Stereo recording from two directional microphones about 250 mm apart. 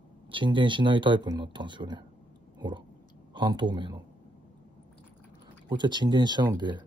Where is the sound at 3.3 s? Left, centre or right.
Centre.